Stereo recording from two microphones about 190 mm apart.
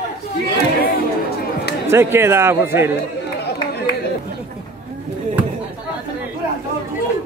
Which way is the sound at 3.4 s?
60° left (ahead or behind).